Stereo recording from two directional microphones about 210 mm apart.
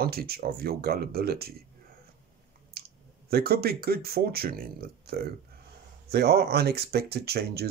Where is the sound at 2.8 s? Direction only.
50° right (ahead or behind).